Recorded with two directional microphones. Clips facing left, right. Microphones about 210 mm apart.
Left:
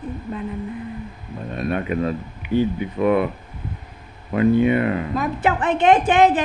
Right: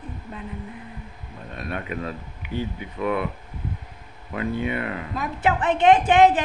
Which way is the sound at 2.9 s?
45° left (ahead or behind).